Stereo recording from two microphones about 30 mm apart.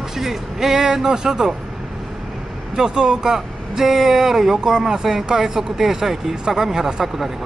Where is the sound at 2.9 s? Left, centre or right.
Right.